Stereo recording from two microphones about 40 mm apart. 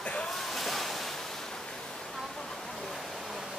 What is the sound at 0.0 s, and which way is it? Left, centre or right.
Waves, left.